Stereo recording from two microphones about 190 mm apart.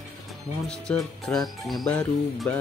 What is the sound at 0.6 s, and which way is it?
Speech, 5° left (ahead or behind).